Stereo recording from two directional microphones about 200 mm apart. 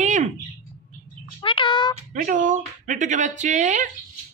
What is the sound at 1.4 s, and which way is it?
Speech, 25° left (ahead or behind).